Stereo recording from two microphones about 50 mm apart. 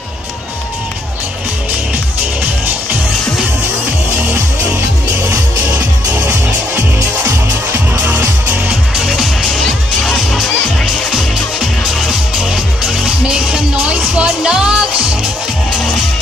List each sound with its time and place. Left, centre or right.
6.2 s music: right
8.9 s music: centre
11.9 s music: centre